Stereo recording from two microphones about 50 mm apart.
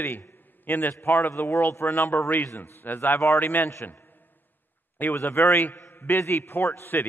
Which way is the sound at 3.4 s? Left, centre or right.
Left.